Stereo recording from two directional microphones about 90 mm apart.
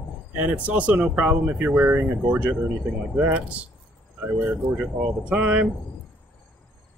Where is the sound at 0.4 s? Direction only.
15° right (ahead or behind).